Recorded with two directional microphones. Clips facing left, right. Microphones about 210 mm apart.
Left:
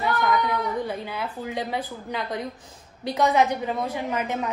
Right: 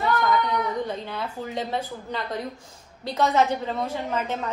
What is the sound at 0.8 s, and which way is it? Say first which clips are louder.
A woman's voice: left 1 dB; 10° left (ahead or behind).